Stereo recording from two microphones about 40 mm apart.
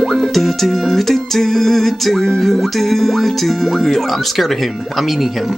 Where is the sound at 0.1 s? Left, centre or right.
Centre.